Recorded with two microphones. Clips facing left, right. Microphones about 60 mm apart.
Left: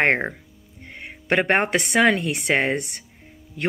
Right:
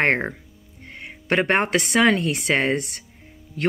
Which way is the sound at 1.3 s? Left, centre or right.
Left.